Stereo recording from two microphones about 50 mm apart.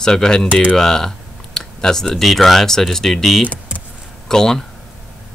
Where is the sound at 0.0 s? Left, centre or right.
Centre.